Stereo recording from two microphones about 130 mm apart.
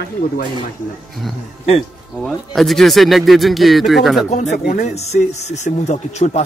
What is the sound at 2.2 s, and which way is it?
Speech, centre (ahead or behind).